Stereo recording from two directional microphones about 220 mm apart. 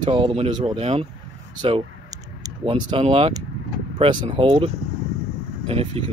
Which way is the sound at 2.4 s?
20° right (ahead or behind).